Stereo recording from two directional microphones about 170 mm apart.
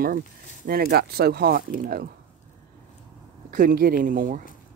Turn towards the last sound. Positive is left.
turn(degrees=-55)  # may be behind; listen again after turning